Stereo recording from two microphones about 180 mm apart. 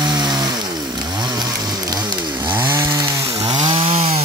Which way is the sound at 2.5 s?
15° right (ahead or behind).